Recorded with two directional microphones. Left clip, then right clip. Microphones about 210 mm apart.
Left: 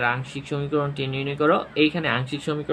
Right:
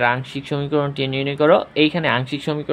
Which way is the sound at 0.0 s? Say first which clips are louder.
Right 5 dB; 40° right (ahead or behind).